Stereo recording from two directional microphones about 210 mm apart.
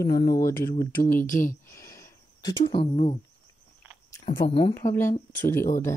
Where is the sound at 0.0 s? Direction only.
20° left (ahead or behind).